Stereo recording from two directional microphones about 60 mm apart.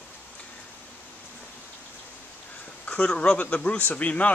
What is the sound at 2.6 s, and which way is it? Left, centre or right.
A man's voice, left.